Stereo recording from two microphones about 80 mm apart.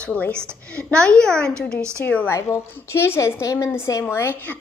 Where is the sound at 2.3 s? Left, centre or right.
Left.